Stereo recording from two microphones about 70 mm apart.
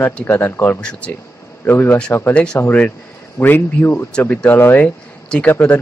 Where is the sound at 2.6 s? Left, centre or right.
Left.